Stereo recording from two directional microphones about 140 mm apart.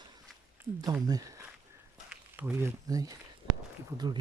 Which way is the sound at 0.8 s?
25° right (ahead or behind).